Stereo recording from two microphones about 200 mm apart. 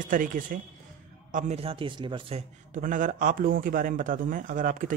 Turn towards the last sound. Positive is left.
turn(degrees=-45)  # may be behind; listen again after turning